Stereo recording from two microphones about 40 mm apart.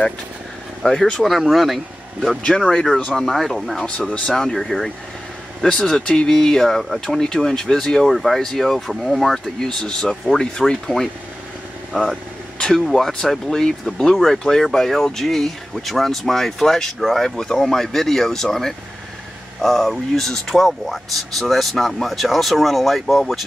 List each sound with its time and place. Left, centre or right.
0.8 s speech: centre
1.1 s speech: centre
2.7 s speech: centre
3.7 s speech: centre
8.1 s speech: centre
9.6 s speech: centre